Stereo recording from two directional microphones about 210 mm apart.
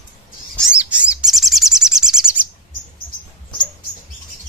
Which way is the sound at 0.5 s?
5° right (ahead or behind).